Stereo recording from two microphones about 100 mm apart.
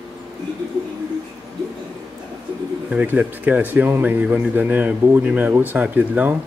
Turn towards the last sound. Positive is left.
turn(degrees=-15)  # may be behind; listen again after turning